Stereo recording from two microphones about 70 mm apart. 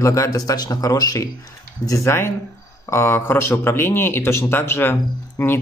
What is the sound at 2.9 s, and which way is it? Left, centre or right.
Speech, left.